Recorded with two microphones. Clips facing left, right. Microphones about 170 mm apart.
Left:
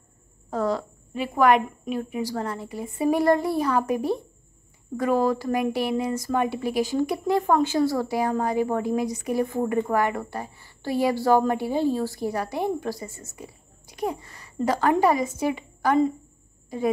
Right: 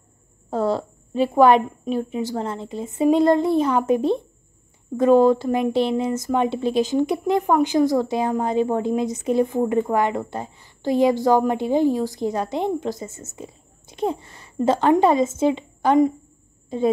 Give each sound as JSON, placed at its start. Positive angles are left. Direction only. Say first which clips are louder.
{"t": 0.5, "sound": "a woman's voice", "louder": "right 3 dB", "side_deg": -30}